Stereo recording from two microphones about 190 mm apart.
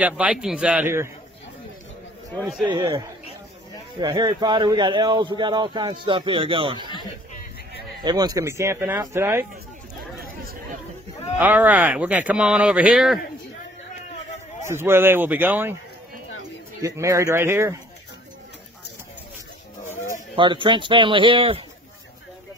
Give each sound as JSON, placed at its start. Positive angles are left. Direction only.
{"t": 0.0, "sound": "speech", "side_deg": -5}
{"t": 2.6, "sound": "speech", "side_deg": -25}
{"t": 4.0, "sound": "speech", "side_deg": -20}
{"t": 8.0, "sound": "speech", "side_deg": -20}
{"t": 11.3, "sound": "speech", "side_deg": -10}
{"t": 14.6, "sound": "speech", "side_deg": -15}
{"t": 16.8, "sound": "speech", "side_deg": -15}
{"t": 20.3, "sound": "speech", "side_deg": -25}